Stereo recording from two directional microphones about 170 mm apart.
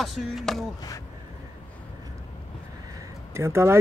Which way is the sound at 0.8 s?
20° left (ahead or behind).